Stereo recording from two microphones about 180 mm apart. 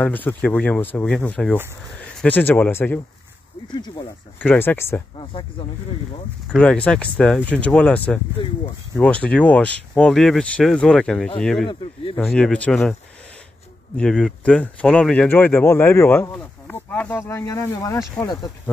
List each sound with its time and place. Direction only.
0.0 s speech: 10° left (ahead or behind)
3.7 s speech: 25° left (ahead or behind)
4.4 s speech: 10° left (ahead or behind)
5.1 s speech: 25° left (ahead or behind)
6.5 s speech: 5° left (ahead or behind)
13.9 s speech: 5° left (ahead or behind); by 18.5 s 20° left (ahead or behind)